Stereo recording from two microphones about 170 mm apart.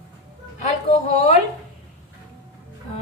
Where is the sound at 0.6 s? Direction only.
40° left (ahead or behind).